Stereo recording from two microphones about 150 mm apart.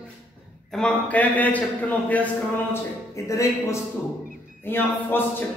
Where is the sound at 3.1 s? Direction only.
20° left (ahead or behind).